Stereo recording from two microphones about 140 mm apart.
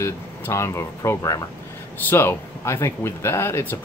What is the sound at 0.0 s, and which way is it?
Speech, 20° left (ahead or behind).